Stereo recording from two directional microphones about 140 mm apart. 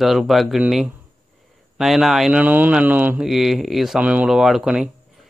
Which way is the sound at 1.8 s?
5° right (ahead or behind).